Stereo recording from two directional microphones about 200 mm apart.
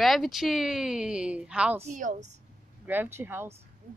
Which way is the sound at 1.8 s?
40° right (ahead or behind).